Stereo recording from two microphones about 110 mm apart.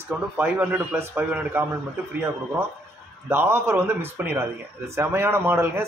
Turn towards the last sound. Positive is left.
turn(degrees=-20)  # may be behind; listen again after turning